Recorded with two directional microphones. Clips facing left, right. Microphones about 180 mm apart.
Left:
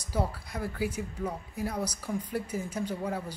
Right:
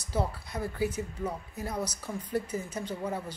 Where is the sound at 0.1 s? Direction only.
10° left (ahead or behind).